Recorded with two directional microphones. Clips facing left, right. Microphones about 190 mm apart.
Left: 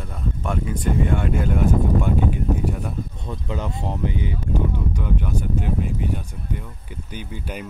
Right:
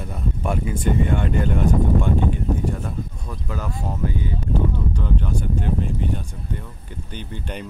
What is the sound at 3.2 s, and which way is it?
Speech, 20° left (ahead or behind).